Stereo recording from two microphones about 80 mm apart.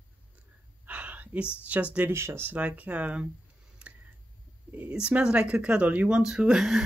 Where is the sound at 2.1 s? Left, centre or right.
Right.